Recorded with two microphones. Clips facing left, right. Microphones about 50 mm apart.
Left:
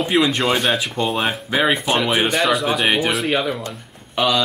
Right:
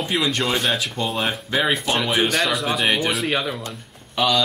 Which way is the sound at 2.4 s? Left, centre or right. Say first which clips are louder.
Left 3 dB; centre.